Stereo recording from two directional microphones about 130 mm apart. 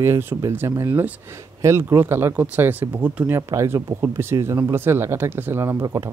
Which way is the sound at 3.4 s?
25° right (ahead or behind).